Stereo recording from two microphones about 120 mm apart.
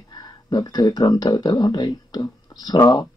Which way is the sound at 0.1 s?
35° left (ahead or behind).